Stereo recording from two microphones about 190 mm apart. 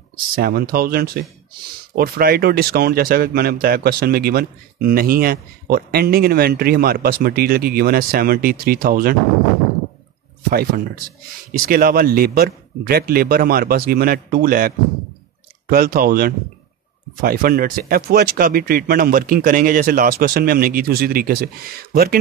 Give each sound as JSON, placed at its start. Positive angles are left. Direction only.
{"t": 0.3, "sound": "speech", "side_deg": -50}
{"t": 10.5, "sound": "speech", "side_deg": -50}
{"t": 15.7, "sound": "speech", "side_deg": -50}